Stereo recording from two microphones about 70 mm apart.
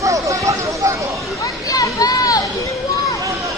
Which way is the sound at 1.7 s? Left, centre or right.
Left.